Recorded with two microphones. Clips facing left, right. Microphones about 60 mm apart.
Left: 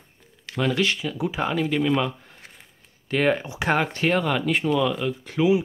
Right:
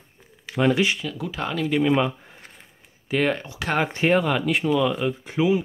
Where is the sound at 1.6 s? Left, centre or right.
Centre.